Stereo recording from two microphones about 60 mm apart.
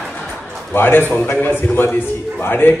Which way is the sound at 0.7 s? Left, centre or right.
Left.